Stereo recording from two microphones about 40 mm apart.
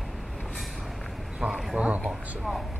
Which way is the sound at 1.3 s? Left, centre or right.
Centre.